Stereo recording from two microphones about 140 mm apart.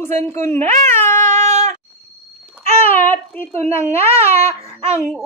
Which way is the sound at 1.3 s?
55° right (ahead or behind).